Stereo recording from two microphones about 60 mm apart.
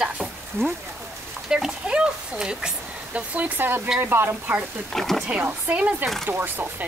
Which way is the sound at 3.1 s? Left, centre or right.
Right.